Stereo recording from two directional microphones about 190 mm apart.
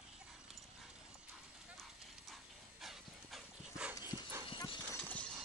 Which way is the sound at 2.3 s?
Centre (ahead or behind).